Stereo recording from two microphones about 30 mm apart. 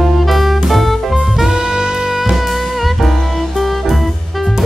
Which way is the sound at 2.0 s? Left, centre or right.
Centre.